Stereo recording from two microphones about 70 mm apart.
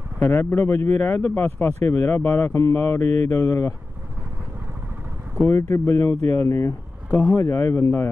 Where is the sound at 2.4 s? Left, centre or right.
Left.